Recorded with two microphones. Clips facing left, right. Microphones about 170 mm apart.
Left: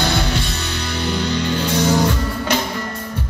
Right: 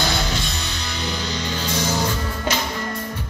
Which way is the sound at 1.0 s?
60° left (ahead or behind).